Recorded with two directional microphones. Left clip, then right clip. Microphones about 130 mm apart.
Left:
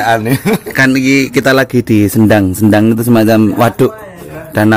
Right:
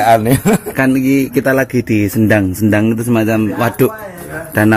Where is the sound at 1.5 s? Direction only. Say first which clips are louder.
Left 4 dB; 20° left (ahead or behind).